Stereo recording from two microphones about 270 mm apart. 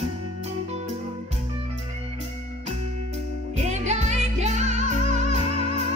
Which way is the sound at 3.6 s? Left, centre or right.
Right.